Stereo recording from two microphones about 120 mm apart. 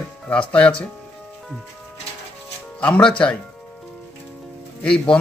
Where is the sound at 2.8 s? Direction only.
10° left (ahead or behind).